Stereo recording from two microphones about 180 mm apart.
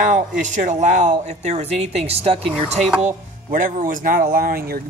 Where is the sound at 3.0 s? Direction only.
50° right (ahead or behind).